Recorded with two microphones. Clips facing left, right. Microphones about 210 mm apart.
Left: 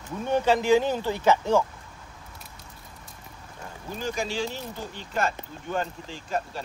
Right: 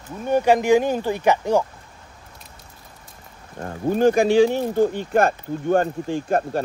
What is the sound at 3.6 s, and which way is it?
Speech, 55° right (ahead or behind).